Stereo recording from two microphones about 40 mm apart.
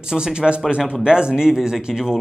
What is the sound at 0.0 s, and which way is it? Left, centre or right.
Speech, centre.